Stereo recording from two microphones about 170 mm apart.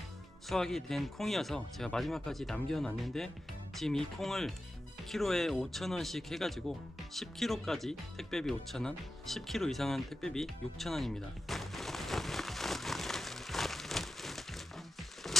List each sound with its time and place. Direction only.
0.5 s speech: centre (ahead or behind)
7.2 s music: centre (ahead or behind)